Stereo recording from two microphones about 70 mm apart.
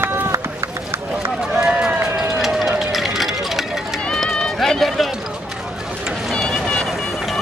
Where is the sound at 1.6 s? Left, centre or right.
Centre.